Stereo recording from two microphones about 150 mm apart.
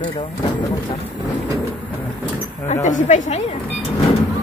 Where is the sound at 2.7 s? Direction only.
55° left (ahead or behind).